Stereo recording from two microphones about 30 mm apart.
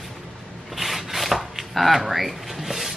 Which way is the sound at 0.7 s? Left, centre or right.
Centre.